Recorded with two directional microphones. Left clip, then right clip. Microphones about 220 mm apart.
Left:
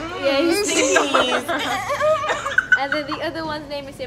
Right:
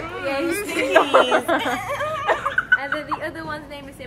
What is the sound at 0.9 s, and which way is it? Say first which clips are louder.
Speech: right 6 dB; 35° right (ahead or behind).